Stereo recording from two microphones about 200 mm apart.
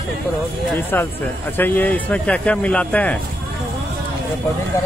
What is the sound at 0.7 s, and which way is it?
Speech, 10° left (ahead or behind).